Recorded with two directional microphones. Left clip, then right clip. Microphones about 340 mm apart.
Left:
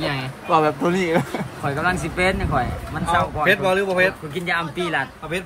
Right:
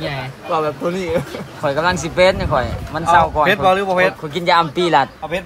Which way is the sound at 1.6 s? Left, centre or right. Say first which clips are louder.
Right 6 dB; centre.